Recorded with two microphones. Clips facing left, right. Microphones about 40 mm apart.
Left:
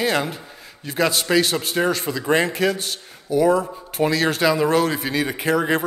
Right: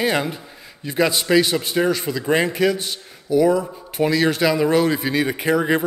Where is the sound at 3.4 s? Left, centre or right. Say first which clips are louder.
Even; centre.